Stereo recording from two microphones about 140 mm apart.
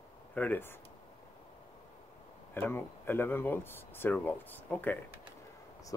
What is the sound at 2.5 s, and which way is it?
Speech, 15° left (ahead or behind).